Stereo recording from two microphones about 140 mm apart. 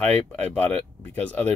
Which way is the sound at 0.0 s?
10° left (ahead or behind).